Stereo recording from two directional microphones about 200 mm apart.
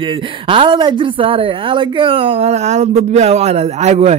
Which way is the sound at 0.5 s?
25° right (ahead or behind).